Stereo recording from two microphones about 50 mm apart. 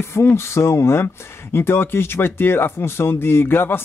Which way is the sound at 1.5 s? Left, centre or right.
Left.